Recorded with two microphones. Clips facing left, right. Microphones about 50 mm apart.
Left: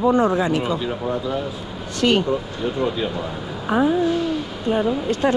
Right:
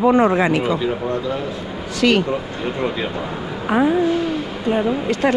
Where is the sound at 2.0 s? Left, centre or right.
Right.